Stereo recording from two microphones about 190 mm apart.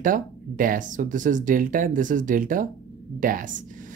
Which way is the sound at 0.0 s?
45° right (ahead or behind).